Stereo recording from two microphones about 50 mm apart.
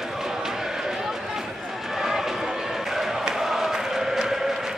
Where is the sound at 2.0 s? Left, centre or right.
Centre.